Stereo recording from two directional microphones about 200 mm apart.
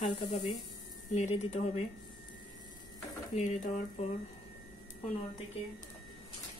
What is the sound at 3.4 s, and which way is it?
Speech, 40° left (ahead or behind).